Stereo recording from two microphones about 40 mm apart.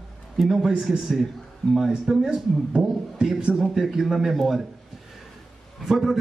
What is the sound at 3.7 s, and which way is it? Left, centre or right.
Speech, centre.